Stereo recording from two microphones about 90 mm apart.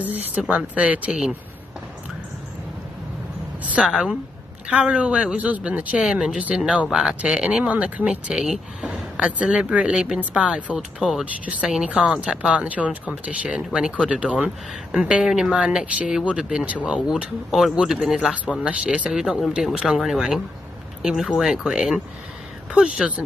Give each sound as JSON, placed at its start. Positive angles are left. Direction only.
{"t": 0.0, "sound": "speech", "side_deg": -20}
{"t": 3.6, "sound": "speech", "side_deg": -10}